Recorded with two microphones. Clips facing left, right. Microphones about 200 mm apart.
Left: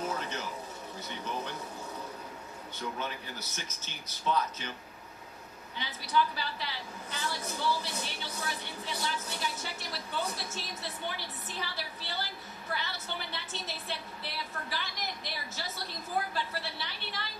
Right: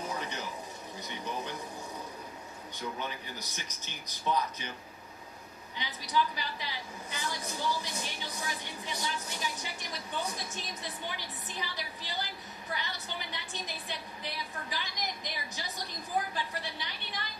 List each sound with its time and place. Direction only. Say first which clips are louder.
0.1 s a sound: left 1 dB; 15° right (ahead or behind)
3.0 s a woman's voice: left 1 dB; 15° right (ahead or behind)
5.8 s a woman's voice: left 1 dB; 15° right (ahead or behind)